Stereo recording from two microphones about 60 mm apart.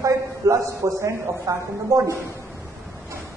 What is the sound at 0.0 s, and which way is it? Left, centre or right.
A woman's voice, right.